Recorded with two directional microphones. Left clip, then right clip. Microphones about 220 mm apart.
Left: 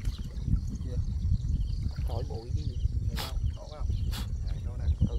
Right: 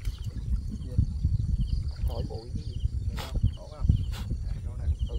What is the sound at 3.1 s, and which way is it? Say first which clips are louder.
Wild animals: left 2 dB; 35° left (ahead or behind).